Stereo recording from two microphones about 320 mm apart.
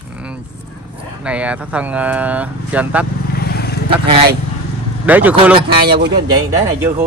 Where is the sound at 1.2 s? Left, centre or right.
Centre.